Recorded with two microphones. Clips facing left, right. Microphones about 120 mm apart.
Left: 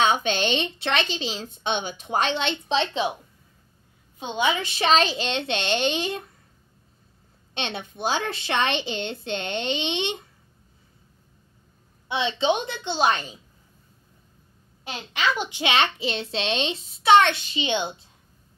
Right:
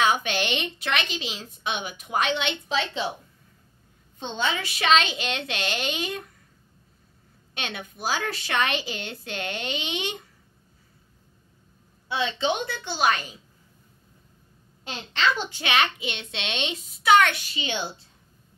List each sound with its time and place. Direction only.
0.0 s a woman's voice: 25° left (ahead or behind)
4.2 s a woman's voice: 15° left (ahead or behind)
4.6 s a woman's voice: 30° left (ahead or behind)
7.5 s a woman's voice: 25° left (ahead or behind)
12.1 s a woman's voice: 20° left (ahead or behind)
14.9 s a woman's voice: 10° left (ahead or behind)